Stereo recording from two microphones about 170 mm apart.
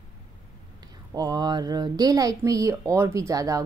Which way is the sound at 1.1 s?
20° right (ahead or behind).